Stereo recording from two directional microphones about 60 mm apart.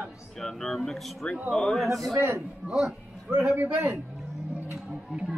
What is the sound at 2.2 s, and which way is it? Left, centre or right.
Speech, right.